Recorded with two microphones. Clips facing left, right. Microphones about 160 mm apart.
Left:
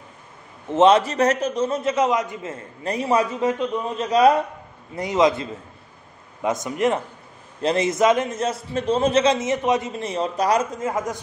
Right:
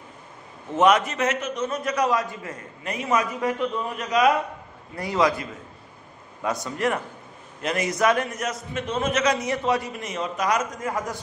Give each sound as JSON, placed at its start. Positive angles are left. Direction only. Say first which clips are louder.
{"t": 0.7, "sound": "a man's voice", "louder": "left 4 dB", "side_deg": 25}
{"t": 4.9, "sound": "a man's voice", "louder": "left 4 dB", "side_deg": 20}